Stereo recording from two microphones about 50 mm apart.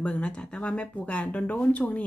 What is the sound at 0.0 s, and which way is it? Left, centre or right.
A woman's voice, left.